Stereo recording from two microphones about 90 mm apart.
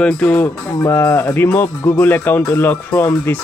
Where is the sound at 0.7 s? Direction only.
30° left (ahead or behind).